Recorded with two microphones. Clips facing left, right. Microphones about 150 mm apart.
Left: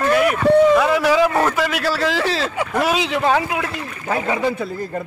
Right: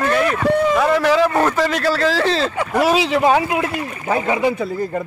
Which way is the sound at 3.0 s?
5° right (ahead or behind).